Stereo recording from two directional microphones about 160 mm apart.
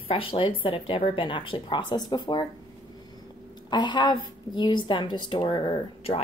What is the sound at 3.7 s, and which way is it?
A woman's voice, 30° left (ahead or behind).